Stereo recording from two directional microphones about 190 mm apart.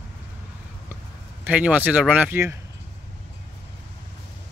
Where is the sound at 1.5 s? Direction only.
5° right (ahead or behind).